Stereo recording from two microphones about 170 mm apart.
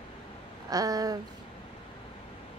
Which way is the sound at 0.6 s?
20° right (ahead or behind).